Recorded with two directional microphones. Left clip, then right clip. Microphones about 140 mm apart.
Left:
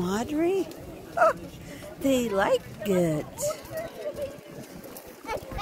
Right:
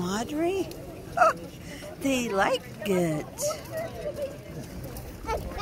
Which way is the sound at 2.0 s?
50° left (ahead or behind).